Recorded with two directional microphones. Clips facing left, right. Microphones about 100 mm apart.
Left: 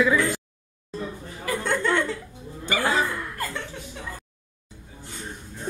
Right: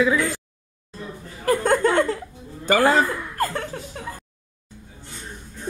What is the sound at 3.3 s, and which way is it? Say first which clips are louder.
Chuckle: right 7 dB; 45° right (ahead or behind).